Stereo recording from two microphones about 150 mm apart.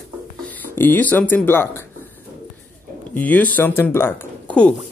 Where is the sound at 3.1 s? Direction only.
10° left (ahead or behind).